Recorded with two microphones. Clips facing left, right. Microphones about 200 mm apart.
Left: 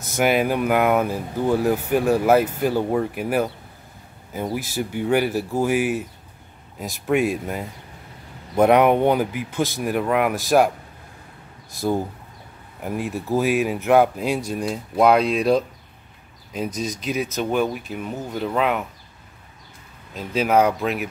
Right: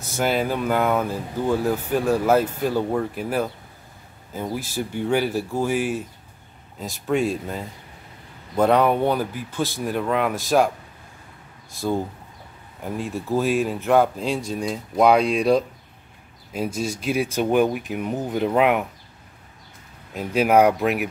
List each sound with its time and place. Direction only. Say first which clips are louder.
0.1 s speech: left 3 dB; 15° left (ahead or behind)
12.8 s speech: left 2 dB; 10° left (ahead or behind); by 18.9 s 15° right (ahead or behind)
20.2 s speech: right 2 dB; 10° right (ahead or behind)